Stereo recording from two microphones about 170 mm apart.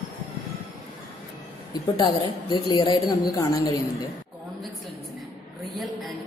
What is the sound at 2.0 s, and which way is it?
A woman's voice, 25° left (ahead or behind).